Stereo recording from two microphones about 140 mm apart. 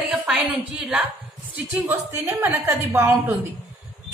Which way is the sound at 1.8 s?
15° right (ahead or behind).